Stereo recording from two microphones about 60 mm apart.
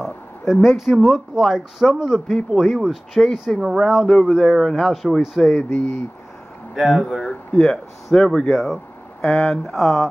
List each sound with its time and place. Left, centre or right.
0.0 s speech: centre
5.6 s speech: left
6.7 s speech: centre